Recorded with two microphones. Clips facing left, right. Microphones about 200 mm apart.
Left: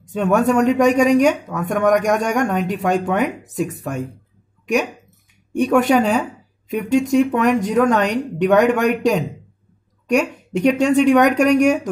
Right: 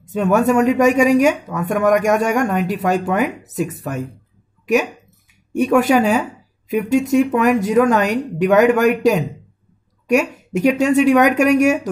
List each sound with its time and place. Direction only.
0.0 s speech: 5° right (ahead or behind)
5.5 s speech: 5° right (ahead or behind)